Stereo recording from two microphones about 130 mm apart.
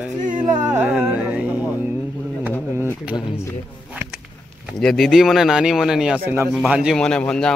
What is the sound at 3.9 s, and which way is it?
Insect, 10° right (ahead or behind).